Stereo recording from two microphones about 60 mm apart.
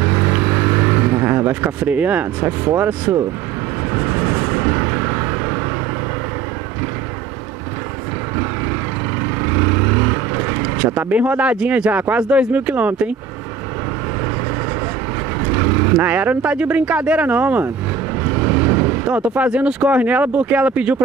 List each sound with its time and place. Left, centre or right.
0.0 s vehicle: right
3.9 s vehicle: right
9.5 s vehicle: right
11.0 s speech: right
15.5 s speech: right